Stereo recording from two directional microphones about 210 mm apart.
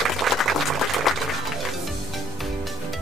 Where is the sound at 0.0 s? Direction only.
Centre (ahead or behind).